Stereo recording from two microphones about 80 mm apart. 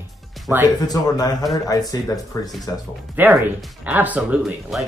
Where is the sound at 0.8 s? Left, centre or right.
Left.